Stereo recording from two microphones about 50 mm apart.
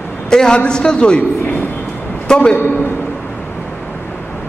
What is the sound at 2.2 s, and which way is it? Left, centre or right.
Speech, centre.